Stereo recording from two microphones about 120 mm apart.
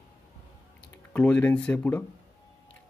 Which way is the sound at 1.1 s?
10° left (ahead or behind).